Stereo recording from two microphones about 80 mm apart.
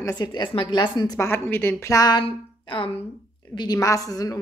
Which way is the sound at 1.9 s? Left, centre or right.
Left.